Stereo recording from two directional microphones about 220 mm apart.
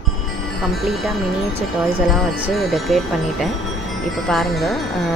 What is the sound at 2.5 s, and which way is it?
Speech, centre (ahead or behind).